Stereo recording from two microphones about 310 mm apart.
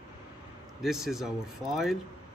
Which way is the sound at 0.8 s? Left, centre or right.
Centre.